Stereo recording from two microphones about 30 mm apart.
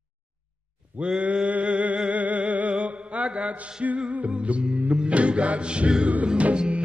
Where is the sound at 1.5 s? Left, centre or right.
Right.